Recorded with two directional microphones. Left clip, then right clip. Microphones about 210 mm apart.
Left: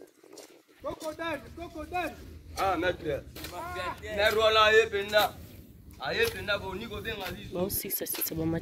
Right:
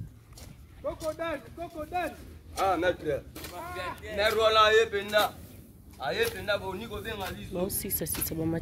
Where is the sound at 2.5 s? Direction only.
45° right (ahead or behind).